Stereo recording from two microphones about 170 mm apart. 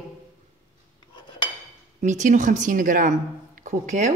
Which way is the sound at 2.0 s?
45° right (ahead or behind).